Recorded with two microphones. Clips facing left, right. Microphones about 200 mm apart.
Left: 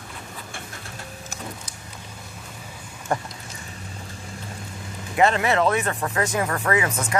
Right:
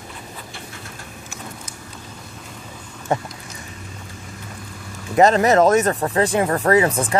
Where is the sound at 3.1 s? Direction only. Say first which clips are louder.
Right 4 dB; 20° right (ahead or behind).